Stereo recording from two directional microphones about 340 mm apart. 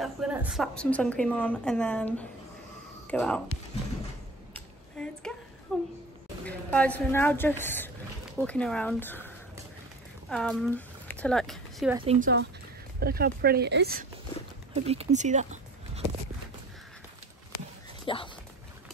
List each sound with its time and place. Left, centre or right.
0.0 s a woman's voice: centre
4.9 s a sound: centre
5.7 s a woman's voice: centre
10.3 s speech: centre
12.0 s speech: right
18.0 s speech: centre